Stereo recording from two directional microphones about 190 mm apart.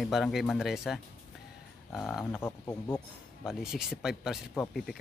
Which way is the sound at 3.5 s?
Centre (ahead or behind).